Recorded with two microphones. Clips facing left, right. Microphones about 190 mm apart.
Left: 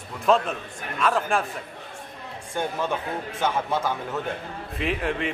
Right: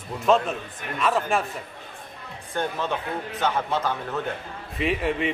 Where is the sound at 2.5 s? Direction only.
10° left (ahead or behind).